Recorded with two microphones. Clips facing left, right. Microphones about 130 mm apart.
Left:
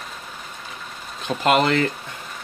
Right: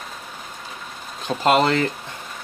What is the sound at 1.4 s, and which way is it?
Speech, 35° right (ahead or behind).